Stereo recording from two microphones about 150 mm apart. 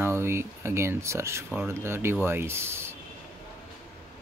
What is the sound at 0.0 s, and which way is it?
Speech, 15° right (ahead or behind).